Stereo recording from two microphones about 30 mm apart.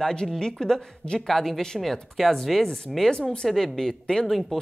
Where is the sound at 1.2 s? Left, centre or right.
Centre.